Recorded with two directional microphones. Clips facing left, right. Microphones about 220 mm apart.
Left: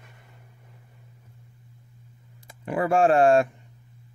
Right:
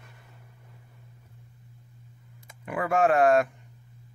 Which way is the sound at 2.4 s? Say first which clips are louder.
Left 5 dB; 30° left (ahead or behind).